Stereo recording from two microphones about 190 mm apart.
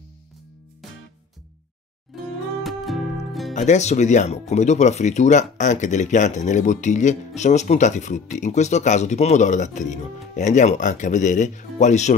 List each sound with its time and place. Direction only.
2.2 s music: centre (ahead or behind)
3.5 s speech: 35° left (ahead or behind)